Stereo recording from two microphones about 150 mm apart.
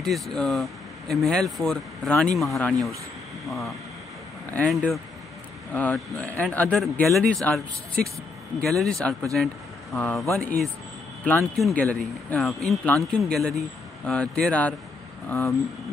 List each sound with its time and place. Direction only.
0.0 s speech: 5° left (ahead or behind)
11.5 s speech: 5° left (ahead or behind)